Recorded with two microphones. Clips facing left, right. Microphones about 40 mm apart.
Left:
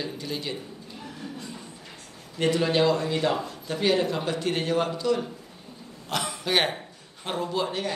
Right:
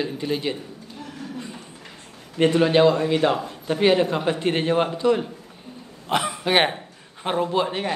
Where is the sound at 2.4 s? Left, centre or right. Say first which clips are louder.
Right 6 dB; right.